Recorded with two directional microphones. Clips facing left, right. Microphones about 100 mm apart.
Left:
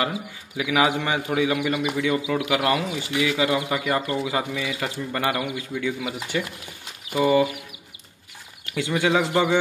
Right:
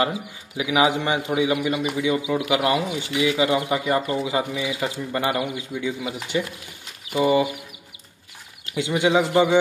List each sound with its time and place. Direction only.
0.6 s a man's voice: 20° right (ahead or behind)
8.6 s a man's voice: 20° right (ahead or behind)